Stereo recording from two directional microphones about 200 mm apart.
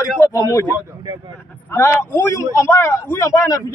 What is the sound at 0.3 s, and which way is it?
Speech, 15° left (ahead or behind).